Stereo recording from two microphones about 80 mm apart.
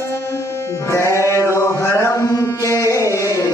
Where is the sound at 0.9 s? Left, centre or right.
Left.